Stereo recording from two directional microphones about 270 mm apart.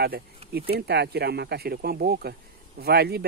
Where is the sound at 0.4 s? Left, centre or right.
Right.